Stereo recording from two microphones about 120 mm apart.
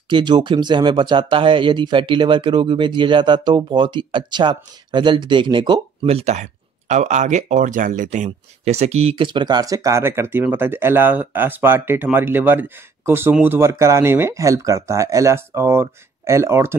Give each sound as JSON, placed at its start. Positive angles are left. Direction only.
{"t": 0.1, "sound": "speech", "side_deg": -40}